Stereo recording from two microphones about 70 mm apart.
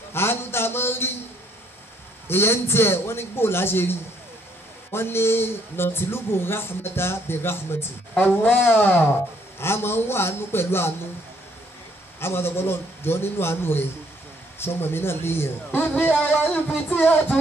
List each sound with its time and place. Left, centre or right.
0.1 s a sound: left
2.2 s a man's voice: left
4.9 s a man's voice: left
12.2 s a man's voice: left